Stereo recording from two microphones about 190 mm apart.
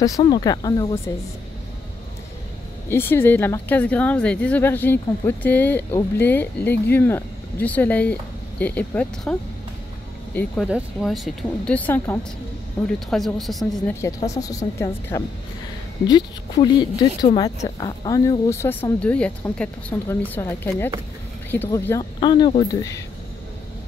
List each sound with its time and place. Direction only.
0.0 s speech: 20° left (ahead or behind)
2.9 s a woman's voice: 10° left (ahead or behind)
10.7 s a woman's voice: 5° right (ahead or behind)
14.0 s a woman's voice: 15° left (ahead or behind)